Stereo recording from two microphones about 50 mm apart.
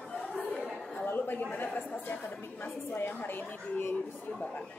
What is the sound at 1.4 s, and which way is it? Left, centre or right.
Speech, left.